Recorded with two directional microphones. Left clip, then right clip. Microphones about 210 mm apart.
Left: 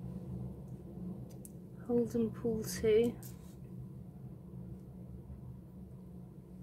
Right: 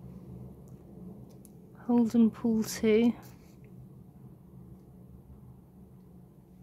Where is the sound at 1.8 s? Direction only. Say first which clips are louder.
Right 6 dB; 55° right (ahead or behind).